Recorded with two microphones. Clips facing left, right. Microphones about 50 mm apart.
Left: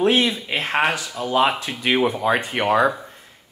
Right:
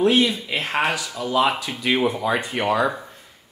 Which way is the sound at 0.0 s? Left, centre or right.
Left.